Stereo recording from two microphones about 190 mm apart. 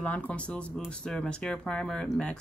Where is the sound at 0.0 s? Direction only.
5° left (ahead or behind).